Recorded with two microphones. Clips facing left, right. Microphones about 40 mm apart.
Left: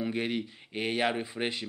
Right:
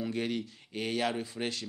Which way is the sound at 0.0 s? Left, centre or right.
Left.